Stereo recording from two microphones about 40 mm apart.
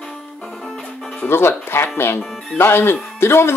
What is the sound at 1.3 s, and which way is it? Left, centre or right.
Speech, left.